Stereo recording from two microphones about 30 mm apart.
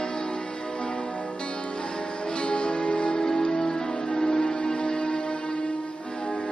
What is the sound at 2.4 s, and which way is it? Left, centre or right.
Music, left.